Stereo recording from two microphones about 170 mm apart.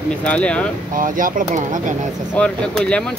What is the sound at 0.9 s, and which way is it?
Speech, 55° right (ahead or behind).